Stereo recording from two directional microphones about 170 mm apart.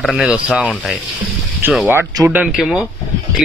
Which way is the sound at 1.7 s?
10° right (ahead or behind).